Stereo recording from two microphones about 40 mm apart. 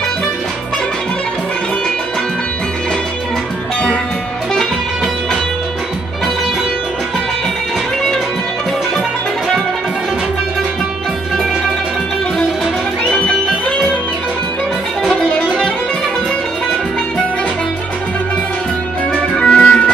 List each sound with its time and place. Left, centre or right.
4.6 s music: centre
15.1 s music: left
19.3 s music: left